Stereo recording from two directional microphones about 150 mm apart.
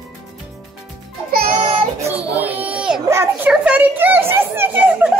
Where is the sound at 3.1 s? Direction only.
20° right (ahead or behind).